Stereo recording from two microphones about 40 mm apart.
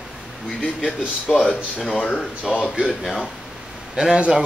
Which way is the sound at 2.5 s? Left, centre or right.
Centre.